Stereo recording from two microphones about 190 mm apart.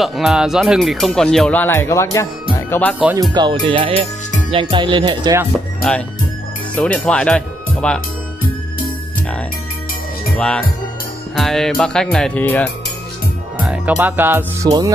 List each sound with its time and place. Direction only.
0.0 s speech: centre (ahead or behind)
2.5 s music: 10° left (ahead or behind)
3.2 s speech: 25° right (ahead or behind)
5.8 s speech: 5° left (ahead or behind)
10.3 s speech: 5° left (ahead or behind)
13.7 s speech: 10° right (ahead or behind)